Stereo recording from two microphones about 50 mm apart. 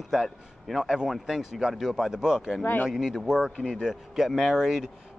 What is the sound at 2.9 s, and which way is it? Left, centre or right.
Speech, centre.